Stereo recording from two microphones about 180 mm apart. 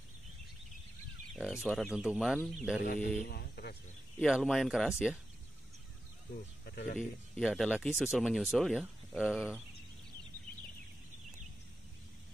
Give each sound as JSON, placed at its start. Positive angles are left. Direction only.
{"t": 1.3, "sound": "speech", "side_deg": -5}
{"t": 3.3, "sound": "speech", "side_deg": 60}
{"t": 4.2, "sound": "speech", "side_deg": 0}
{"t": 6.7, "sound": "speech", "side_deg": 60}
{"t": 7.0, "sound": "speech", "side_deg": 0}